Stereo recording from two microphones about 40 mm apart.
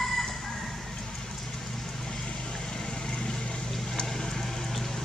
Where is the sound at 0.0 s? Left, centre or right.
Centre.